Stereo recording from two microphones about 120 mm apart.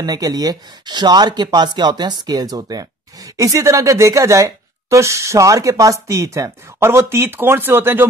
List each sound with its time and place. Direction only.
0.0 s speech: 35° right (ahead or behind)